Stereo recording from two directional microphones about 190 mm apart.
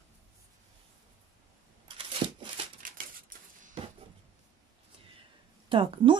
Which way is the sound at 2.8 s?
50° right (ahead or behind).